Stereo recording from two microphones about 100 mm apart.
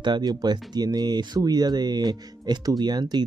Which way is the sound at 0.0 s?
45° right (ahead or behind).